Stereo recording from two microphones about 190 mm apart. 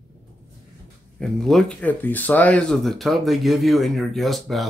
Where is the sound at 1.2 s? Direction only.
Centre (ahead or behind).